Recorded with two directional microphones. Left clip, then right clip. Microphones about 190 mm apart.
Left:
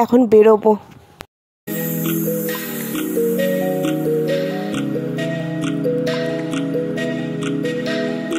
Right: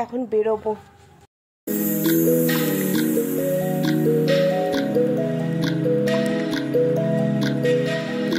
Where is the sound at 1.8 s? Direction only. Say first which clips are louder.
Right 3 dB; centre (ahead or behind).